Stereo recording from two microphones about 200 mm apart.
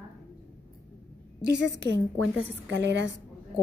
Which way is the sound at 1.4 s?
60° right (ahead or behind).